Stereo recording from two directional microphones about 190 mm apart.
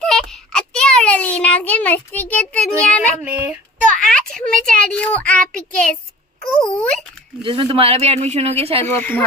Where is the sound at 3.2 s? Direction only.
10° right (ahead or behind).